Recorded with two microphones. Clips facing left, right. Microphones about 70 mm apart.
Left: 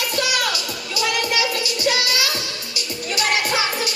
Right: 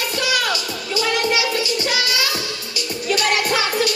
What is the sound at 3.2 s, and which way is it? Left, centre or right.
Music, right.